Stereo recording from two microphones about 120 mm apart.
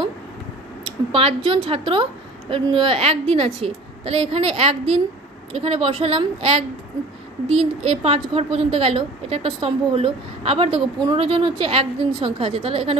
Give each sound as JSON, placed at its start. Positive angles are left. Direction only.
{"t": 1.1, "sound": "a woman's voice", "side_deg": -50}